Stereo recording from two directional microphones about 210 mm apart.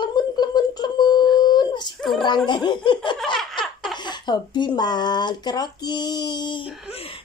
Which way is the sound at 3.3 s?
Centre (ahead or behind).